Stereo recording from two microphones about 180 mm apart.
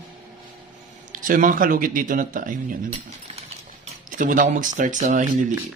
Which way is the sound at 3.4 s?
40° right (ahead or behind).